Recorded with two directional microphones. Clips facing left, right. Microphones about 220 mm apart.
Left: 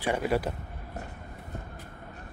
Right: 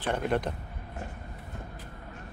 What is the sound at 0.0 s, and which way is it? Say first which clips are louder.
Speech: left 1 dB; 10° left (ahead or behind).